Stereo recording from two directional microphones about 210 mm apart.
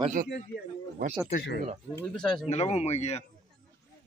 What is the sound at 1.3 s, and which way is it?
Speech, 50° left (ahead or behind).